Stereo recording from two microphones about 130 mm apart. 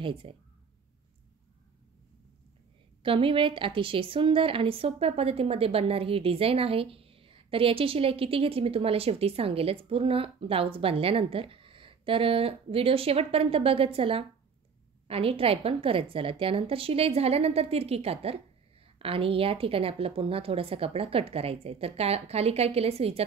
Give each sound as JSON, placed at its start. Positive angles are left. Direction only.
{"t": 0.0, "sound": "a woman's voice", "side_deg": -45}
{"t": 3.0, "sound": "a woman's voice", "side_deg": -45}